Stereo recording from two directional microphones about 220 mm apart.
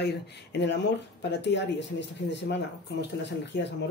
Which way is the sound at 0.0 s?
50° left (ahead or behind).